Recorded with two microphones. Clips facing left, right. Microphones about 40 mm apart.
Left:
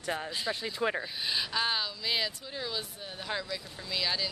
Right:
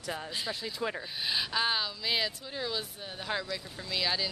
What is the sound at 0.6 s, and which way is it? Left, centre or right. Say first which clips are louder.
Speech: left 6 dB; centre.